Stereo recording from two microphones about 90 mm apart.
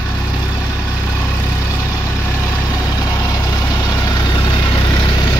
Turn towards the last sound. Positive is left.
turn(degrees=50)  # may be behind; listen again after turning